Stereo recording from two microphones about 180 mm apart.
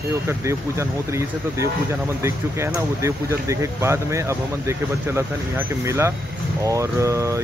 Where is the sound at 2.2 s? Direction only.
15° right (ahead or behind).